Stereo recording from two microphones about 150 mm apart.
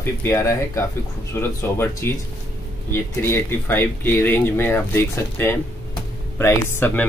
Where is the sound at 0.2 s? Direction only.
15° left (ahead or behind).